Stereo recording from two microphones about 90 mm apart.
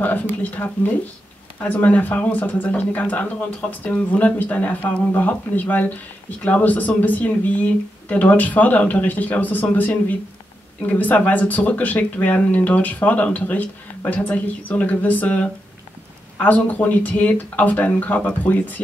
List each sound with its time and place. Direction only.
0.0 s speech: 20° left (ahead or behind)